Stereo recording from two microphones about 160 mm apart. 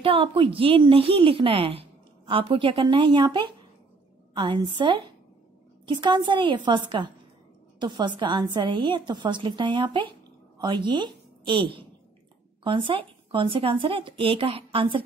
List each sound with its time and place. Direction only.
0.0 s a woman's voice: 35° right (ahead or behind)